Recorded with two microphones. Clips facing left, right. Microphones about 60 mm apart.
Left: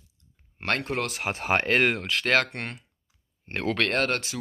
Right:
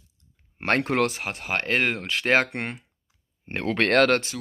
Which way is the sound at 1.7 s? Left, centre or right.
Centre.